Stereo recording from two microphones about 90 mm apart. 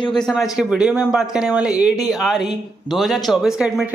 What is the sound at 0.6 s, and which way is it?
Speech, 10° right (ahead or behind).